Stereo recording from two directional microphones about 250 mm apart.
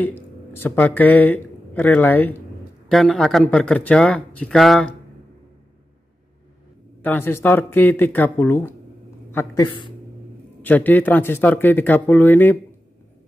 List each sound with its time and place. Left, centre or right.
0.0 s speech: centre
7.0 s speech: centre
10.6 s speech: centre